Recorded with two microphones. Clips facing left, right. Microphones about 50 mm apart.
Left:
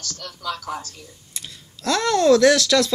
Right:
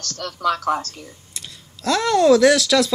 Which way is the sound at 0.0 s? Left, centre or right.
Right.